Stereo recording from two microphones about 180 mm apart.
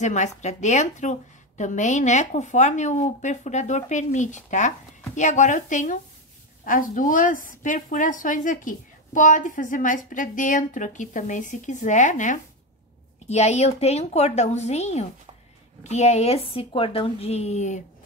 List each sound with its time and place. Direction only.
0.0 s a woman's voice: 40° left (ahead or behind)